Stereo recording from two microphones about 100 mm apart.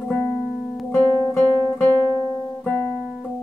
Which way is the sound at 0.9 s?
30° left (ahead or behind).